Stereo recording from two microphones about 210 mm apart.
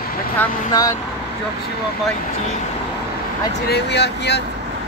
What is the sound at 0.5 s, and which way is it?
Speech, 35° left (ahead or behind).